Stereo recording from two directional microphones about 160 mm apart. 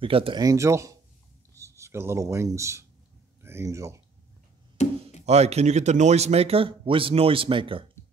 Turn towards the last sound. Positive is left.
turn(degrees=-35)  # may be behind; listen again after turning